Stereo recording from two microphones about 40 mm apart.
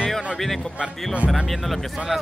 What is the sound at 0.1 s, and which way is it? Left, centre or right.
Speech, centre.